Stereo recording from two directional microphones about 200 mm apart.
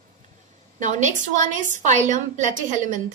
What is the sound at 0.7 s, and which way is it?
A woman's voice, 35° right (ahead or behind).